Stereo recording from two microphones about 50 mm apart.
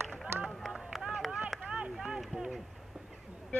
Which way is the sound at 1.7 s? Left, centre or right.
Right.